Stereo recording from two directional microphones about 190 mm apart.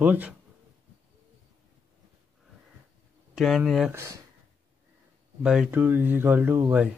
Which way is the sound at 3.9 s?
15° right (ahead or behind).